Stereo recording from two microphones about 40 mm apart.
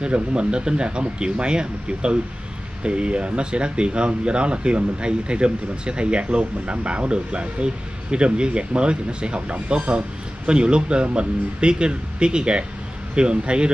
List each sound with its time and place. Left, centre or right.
0.0 s speech: right